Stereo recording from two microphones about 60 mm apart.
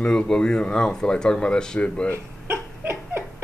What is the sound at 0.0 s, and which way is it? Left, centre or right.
Speech, centre.